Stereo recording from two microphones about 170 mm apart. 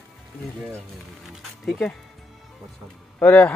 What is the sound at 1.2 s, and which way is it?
Speech, 5° left (ahead or behind).